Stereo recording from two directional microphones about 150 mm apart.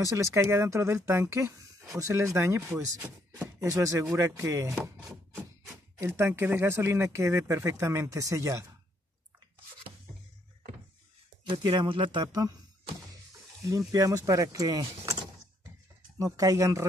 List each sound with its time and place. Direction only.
0.0 s speech: 20° right (ahead or behind)
5.9 s speech: 20° right (ahead or behind)
11.4 s speech: 30° right (ahead or behind)
13.7 s speech: 20° right (ahead or behind)
16.2 s speech: 20° right (ahead or behind)